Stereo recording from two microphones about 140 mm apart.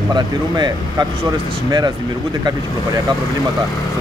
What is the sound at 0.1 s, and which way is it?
Speech, 30° right (ahead or behind).